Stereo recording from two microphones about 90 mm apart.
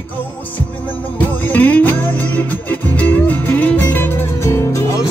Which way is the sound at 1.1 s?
20° left (ahead or behind).